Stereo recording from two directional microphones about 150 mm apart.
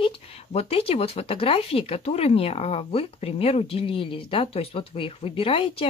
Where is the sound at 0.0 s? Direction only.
40° left (ahead or behind).